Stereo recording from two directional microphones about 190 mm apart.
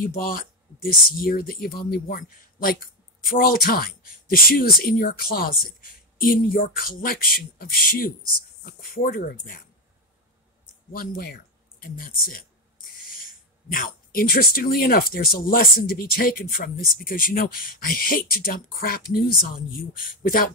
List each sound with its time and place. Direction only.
0.0 s speech: 50° left (ahead or behind)
10.9 s speech: 50° left (ahead or behind)
13.7 s speech: 45° left (ahead or behind)